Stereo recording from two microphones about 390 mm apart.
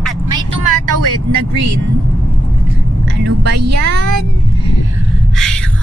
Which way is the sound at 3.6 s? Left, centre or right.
Right.